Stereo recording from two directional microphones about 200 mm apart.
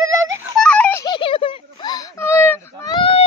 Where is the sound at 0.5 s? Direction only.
5° left (ahead or behind).